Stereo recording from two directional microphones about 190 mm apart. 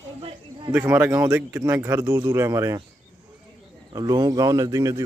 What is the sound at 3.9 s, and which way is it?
Speech, 20° right (ahead or behind).